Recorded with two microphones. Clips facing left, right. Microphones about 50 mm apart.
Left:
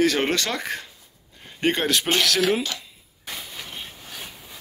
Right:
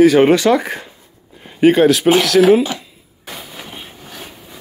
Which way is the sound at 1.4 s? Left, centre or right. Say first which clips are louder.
Right 14 dB; centre.